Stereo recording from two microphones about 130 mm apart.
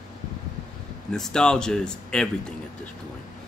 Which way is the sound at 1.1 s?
5° left (ahead or behind).